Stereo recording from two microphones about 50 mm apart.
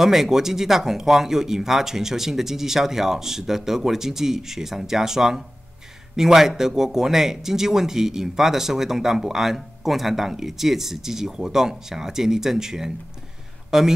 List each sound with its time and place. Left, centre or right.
0.0 s a man's voice: centre